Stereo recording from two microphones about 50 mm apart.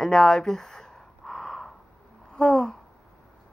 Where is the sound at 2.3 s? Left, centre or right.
Centre.